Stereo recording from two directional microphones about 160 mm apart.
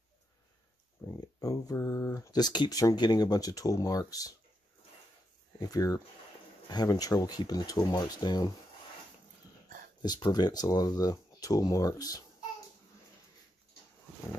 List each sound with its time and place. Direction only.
1.0 s speech: 20° left (ahead or behind)
5.6 s speech: 20° left (ahead or behind)
10.0 s speech: 25° left (ahead or behind)